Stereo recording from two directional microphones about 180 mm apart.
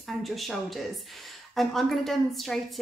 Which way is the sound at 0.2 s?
Centre (ahead or behind).